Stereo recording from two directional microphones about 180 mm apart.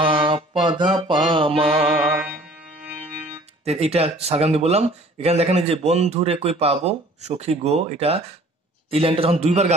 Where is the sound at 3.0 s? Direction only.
35° right (ahead or behind).